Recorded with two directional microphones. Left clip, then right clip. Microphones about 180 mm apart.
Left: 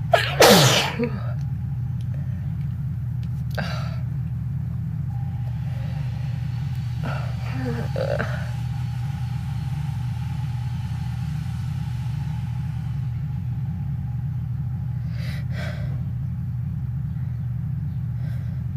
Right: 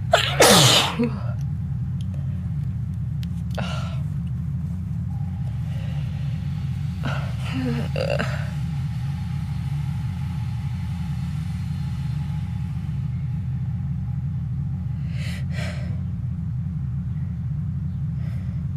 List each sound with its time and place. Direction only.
0.1 s sneeze: 30° right (ahead or behind)
7.5 s speech: 40° right (ahead or behind)